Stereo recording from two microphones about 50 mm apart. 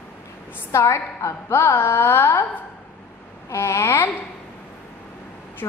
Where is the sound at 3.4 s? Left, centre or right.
Left.